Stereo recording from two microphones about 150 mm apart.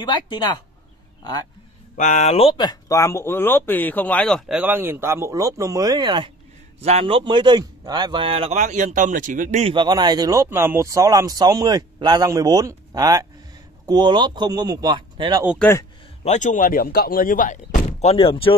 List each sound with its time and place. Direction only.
0.0 s speech: 30° left (ahead or behind)
2.0 s speech: 55° left (ahead or behind); by 4.4 s 10° left (ahead or behind)
4.5 s speech: 10° right (ahead or behind); by 6.3 s 30° right (ahead or behind)
6.8 s speech: 45° right (ahead or behind)
9.8 s speech: 30° right (ahead or behind)
16.3 s speech: 55° left (ahead or behind); by 18.5 s 35° left (ahead or behind)